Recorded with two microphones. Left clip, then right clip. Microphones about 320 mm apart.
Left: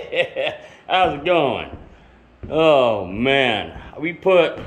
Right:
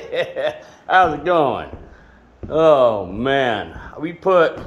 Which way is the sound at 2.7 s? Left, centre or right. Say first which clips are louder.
Right 2 dB; centre.